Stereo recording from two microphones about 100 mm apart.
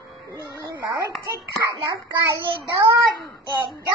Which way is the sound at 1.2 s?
35° right (ahead or behind).